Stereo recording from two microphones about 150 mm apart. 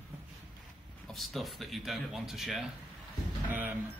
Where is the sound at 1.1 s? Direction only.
Centre (ahead or behind).